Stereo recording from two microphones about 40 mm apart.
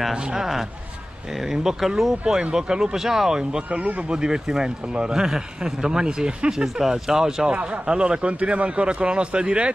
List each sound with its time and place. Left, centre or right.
0.1 s a man's voice: centre
2.5 s a man's voice: centre
3.6 s speech: right
4.1 s a man's voice: centre
6.6 s a man's voice: centre
7.5 s a man's voice: right